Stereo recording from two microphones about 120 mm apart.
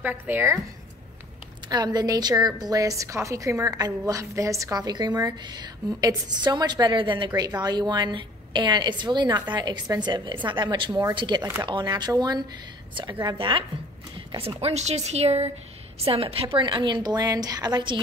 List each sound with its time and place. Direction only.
0.0 s a woman's voice: 15° right (ahead or behind)
1.7 s a woman's voice: 35° right (ahead or behind)
14.6 s a woman's voice: 65° right (ahead or behind); by 18.0 s 40° right (ahead or behind)